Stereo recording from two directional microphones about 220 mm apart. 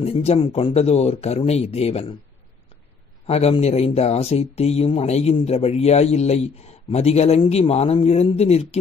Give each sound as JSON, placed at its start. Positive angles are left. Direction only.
{"t": 0.0, "sound": "speech", "side_deg": 30}
{"t": 3.3, "sound": "speech", "side_deg": 30}